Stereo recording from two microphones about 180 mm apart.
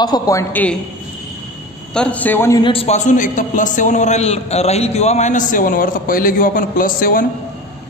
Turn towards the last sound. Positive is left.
turn(degrees=50)  # may be behind; listen again after turning